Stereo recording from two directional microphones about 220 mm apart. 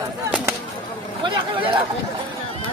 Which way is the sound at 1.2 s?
20° right (ahead or behind).